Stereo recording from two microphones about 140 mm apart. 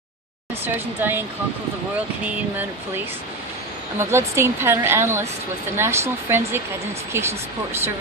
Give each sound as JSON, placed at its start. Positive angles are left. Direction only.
{"t": 0.7, "sound": "a woman's voice", "side_deg": -15}
{"t": 4.1, "sound": "a woman's voice", "side_deg": -20}